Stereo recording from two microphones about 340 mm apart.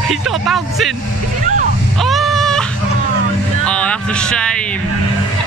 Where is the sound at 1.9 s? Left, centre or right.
Centre.